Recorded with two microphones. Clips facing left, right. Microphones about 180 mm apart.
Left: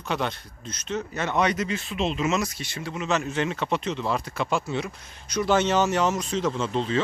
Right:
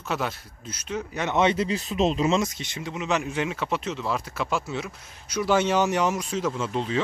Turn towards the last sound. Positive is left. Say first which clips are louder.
# left 2 dB
turn(degrees=-10)  # may be behind; listen again after turning